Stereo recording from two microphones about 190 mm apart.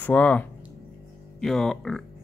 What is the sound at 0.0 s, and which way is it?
Speech, 5° left (ahead or behind).